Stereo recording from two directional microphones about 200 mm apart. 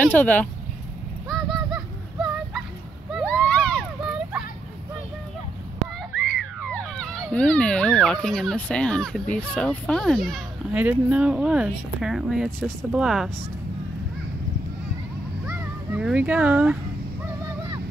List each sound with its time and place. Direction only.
0.0 s speech: 10° left (ahead or behind)
1.3 s honk: centre (ahead or behind)
3.3 s a sound: 5° left (ahead or behind)
6.1 s a sound: 5° left (ahead or behind)
7.3 s a child's voice: 5° left (ahead or behind)
15.4 s music: 5° right (ahead or behind)